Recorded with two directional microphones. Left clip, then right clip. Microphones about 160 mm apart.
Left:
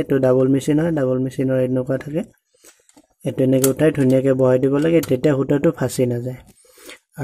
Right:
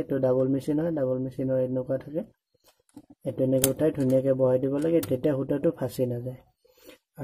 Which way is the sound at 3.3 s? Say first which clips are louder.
Left 8 dB; 15° left (ahead or behind).